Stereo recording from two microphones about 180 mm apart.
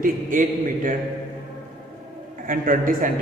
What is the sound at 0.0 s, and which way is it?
Speech, 50° right (ahead or behind).